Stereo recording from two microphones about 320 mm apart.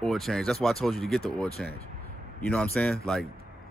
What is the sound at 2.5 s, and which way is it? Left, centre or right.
Speech, centre.